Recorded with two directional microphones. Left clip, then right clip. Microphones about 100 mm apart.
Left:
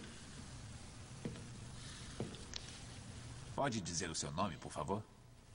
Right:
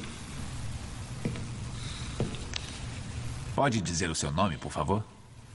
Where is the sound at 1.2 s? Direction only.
40° right (ahead or behind).